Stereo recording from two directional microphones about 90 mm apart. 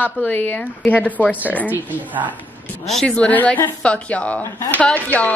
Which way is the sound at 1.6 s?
20° right (ahead or behind).